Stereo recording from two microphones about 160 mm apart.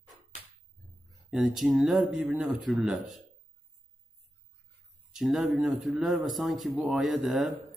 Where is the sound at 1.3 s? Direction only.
Centre (ahead or behind).